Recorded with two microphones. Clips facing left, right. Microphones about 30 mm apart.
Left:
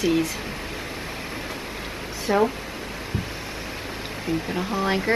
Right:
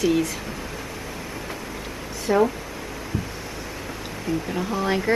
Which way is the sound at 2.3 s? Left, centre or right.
Centre.